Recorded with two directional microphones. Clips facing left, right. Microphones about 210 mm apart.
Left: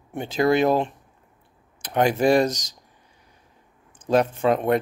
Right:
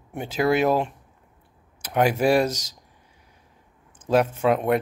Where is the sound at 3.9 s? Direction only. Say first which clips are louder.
Even; 5° right (ahead or behind).